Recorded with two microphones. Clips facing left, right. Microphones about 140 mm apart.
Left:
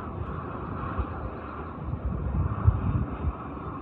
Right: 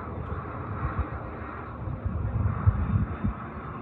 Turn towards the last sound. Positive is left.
turn(degrees=20)  # may be behind; listen again after turning